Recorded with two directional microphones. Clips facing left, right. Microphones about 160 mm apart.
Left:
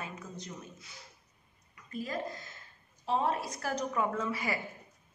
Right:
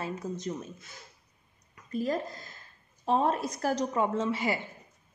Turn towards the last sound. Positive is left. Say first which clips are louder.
# right 4 dB
turn(degrees=-25)  # may be behind; listen again after turning